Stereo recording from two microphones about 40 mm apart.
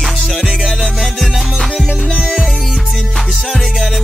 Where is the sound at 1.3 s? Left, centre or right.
Centre.